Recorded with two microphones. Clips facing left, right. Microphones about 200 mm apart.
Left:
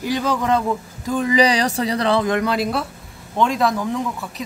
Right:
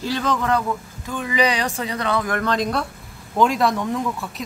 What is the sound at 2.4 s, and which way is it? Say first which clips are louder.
Speech: left 1 dB; 5° left (ahead or behind).